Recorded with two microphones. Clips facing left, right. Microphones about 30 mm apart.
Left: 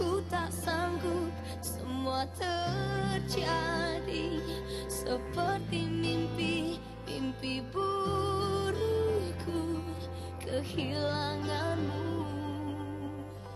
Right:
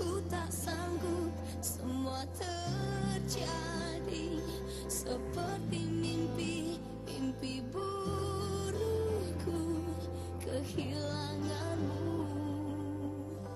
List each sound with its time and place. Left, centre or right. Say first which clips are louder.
0.0 s music: left 5 dB; left